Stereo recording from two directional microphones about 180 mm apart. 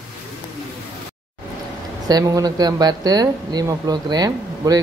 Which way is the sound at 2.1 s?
20° right (ahead or behind).